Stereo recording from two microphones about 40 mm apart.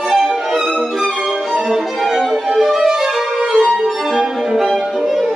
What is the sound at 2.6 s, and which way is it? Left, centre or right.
Violin, centre.